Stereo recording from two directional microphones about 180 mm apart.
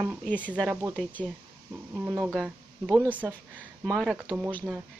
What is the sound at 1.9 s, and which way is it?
Speech, 10° right (ahead or behind).